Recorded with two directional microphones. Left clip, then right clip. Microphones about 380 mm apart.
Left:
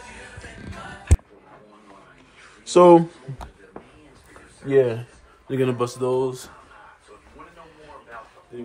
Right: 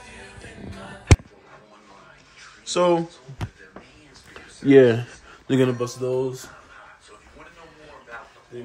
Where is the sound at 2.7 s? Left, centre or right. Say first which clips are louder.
Left 7 dB; centre.